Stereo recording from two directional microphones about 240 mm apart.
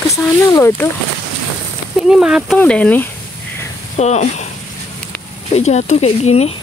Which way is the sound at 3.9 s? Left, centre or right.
Left.